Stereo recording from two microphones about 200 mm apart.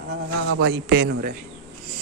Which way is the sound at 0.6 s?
60° right (ahead or behind).